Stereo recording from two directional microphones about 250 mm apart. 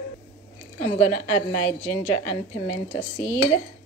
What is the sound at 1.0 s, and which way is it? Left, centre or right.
A woman's voice, centre.